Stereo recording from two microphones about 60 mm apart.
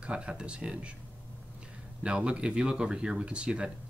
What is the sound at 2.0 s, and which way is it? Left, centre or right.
Speech, centre.